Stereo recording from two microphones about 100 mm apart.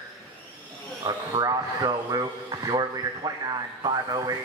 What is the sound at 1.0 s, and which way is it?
Speech, 40° right (ahead or behind).